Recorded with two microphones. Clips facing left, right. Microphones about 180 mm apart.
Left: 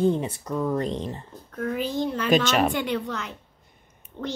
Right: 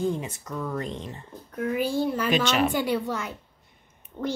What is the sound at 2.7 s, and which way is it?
Speech, 10° right (ahead or behind).